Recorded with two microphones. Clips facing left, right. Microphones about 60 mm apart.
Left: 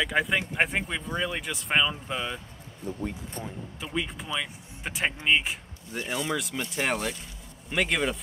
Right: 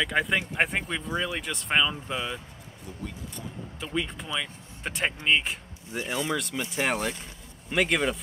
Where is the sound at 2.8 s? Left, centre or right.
Left.